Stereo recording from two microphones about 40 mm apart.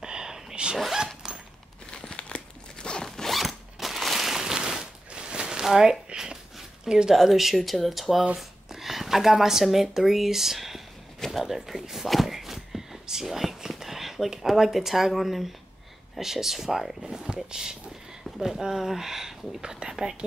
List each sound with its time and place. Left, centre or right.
0.0 s a sound: centre
0.9 s zipper: centre
1.9 s crumpling: centre
3.1 s zipper: centre
5.7 s a sound: centre
6.8 s speech: centre
12.1 s whispering: centre
14.4 s speech: centre